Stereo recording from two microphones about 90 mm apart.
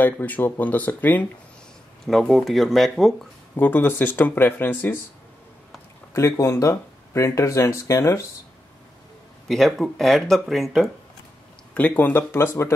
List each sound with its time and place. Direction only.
0.0 s speech: 20° left (ahead or behind)
2.0 s speech: centre (ahead or behind)
3.5 s speech: 20° left (ahead or behind)
6.1 s speech: 35° left (ahead or behind)
9.5 s speech: centre (ahead or behind)
11.7 s speech: 15° left (ahead or behind)